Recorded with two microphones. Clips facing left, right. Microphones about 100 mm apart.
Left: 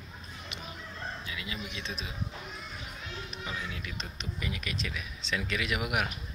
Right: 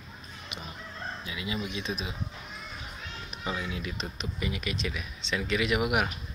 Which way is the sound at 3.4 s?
20° right (ahead or behind).